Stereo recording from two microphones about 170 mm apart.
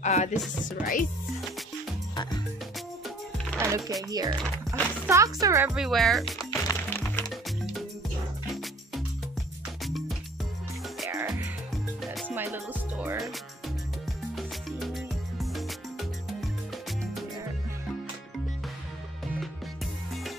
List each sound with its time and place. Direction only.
0.0 s speech: 45° left (ahead or behind)
3.5 s music: 20° right (ahead or behind)
4.1 s speech: 20° right (ahead or behind)
5.7 s speech: centre (ahead or behind)
6.3 s music: 15° left (ahead or behind)
9.8 s music: centre (ahead or behind)
11.2 s music: 10° right (ahead or behind)
14.3 s music: centre (ahead or behind)